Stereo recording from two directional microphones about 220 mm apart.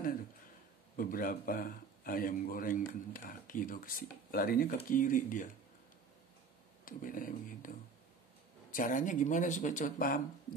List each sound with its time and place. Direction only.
0.9 s speech: 40° left (ahead or behind)
6.8 s speech: 40° left (ahead or behind)
8.7 s speech: 35° left (ahead or behind)